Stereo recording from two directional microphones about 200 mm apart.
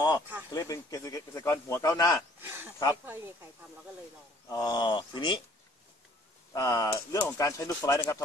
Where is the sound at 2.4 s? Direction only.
10° right (ahead or behind).